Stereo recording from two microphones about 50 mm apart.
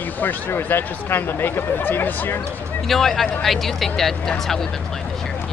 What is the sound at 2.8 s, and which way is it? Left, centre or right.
Speech, centre.